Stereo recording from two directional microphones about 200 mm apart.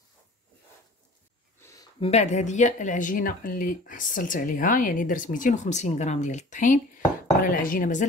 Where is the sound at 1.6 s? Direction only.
15° left (ahead or behind).